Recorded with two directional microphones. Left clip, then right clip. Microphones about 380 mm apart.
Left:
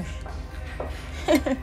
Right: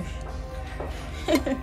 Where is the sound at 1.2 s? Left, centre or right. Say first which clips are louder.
Left 2 dB; centre.